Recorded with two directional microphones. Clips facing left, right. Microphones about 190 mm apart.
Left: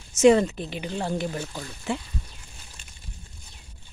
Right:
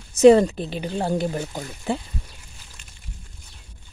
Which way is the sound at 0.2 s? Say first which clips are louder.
Right 5 dB; 35° right (ahead or behind).